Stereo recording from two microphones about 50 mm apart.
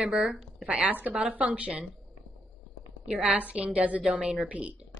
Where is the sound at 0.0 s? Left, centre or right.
Centre.